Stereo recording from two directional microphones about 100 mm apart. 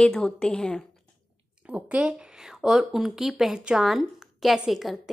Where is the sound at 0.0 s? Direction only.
5° left (ahead or behind).